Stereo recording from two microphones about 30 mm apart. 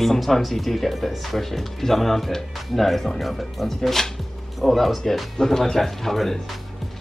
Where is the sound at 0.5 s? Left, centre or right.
Centre.